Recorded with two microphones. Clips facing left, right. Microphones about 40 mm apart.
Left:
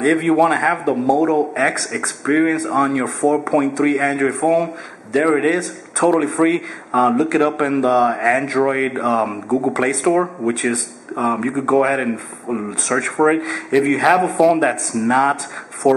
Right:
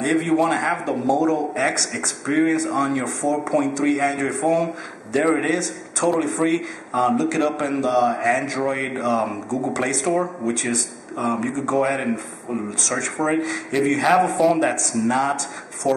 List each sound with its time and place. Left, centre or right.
0.0 s a man's voice: centre
15.0 s a man's voice: centre